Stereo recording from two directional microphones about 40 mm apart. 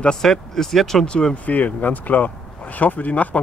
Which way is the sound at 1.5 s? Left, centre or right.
Left.